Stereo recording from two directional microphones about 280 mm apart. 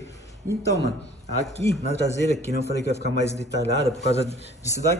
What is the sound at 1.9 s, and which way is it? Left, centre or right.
A man's voice, left.